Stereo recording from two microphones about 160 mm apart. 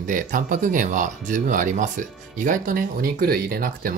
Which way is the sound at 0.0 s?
55° right (ahead or behind).